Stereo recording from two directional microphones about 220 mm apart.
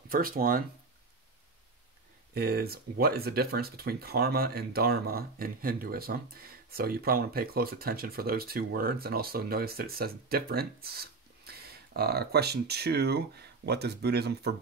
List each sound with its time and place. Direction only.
0.1 s speech: 40° right (ahead or behind)
2.3 s speech: 45° right (ahead or behind)